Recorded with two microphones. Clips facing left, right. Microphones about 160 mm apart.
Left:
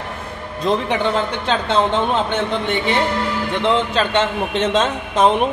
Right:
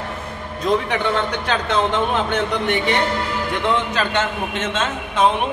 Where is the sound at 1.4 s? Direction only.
30° left (ahead or behind).